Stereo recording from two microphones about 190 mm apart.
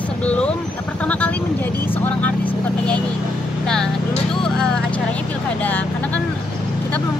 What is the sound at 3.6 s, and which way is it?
Vehicle, 5° left (ahead or behind).